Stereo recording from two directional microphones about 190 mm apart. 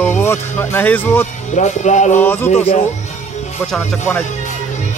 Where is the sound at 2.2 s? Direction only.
10° left (ahead or behind).